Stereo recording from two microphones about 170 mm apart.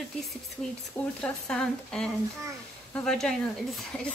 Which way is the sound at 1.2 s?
5° left (ahead or behind).